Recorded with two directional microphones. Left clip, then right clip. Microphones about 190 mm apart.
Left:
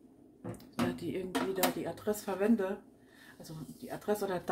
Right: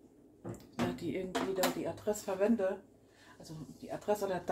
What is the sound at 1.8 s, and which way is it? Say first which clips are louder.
Speech: even; 15° left (ahead or behind).